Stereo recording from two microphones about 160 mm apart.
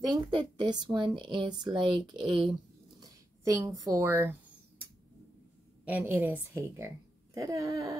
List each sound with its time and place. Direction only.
0.0 s speech: 30° right (ahead or behind)
3.0 s speech: 20° right (ahead or behind)
5.9 s a woman's voice: 10° right (ahead or behind)